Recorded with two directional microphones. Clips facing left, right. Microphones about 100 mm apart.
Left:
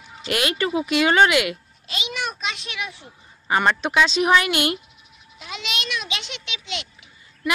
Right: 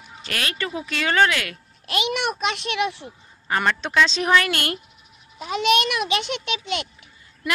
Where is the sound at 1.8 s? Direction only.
60° right (ahead or behind).